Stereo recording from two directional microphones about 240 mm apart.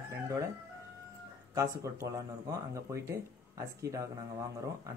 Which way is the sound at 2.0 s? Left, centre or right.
Centre.